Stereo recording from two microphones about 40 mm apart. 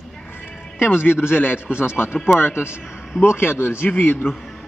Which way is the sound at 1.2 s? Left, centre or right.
Left.